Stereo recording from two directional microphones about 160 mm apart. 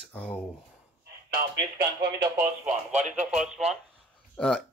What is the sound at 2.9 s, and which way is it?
Speech, 45° right (ahead or behind).